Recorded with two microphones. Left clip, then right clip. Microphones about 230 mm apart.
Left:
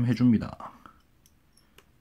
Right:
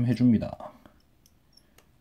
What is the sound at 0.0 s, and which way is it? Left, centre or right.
Speech, centre.